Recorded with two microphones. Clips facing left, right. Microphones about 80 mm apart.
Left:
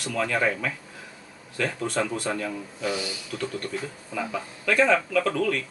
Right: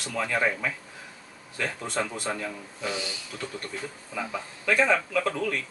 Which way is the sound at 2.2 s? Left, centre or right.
Centre.